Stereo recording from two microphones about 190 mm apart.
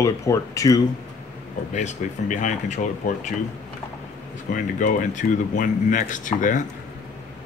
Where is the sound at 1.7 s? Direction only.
40° left (ahead or behind).